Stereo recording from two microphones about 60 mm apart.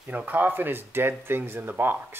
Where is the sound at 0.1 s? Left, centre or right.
Right.